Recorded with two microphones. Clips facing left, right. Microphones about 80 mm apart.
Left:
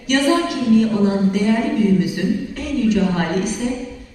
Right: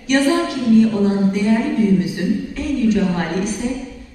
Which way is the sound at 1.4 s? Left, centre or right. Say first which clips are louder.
Right 2 dB; right.